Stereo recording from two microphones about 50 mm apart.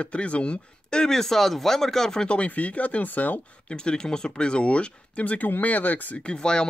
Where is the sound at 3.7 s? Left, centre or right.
Centre; by 6.2 s left.